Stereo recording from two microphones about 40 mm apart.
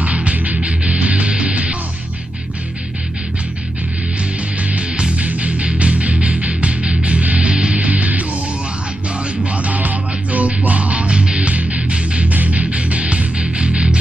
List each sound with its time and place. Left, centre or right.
0.0 s music: right
5.1 s music: right
9.4 s music: right